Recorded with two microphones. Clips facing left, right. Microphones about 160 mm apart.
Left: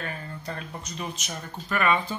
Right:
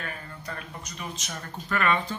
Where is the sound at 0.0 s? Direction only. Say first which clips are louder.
Left 3 dB; 30° left (ahead or behind).